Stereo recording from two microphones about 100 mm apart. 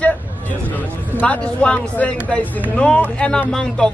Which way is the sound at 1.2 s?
10° left (ahead or behind).